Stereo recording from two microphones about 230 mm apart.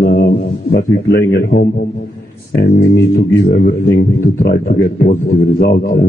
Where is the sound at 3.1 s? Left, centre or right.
Left.